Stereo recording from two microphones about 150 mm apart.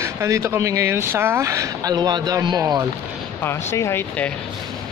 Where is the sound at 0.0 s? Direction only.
20° right (ahead or behind).